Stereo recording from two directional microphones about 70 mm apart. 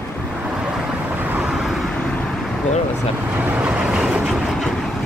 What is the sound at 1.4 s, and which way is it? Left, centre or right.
Vehicle, centre.